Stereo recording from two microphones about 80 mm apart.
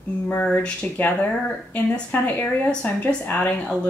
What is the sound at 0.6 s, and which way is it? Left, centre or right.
Speech, centre.